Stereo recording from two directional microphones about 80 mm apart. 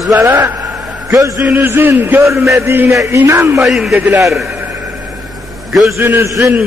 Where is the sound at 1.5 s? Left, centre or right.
Right.